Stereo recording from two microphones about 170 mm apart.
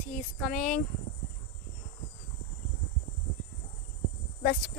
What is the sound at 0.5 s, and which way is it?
Speech, 5° left (ahead or behind).